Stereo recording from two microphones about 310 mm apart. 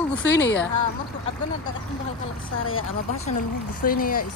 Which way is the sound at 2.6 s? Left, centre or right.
Left.